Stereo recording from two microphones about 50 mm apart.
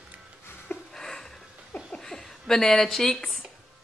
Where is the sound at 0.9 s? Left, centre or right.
Centre.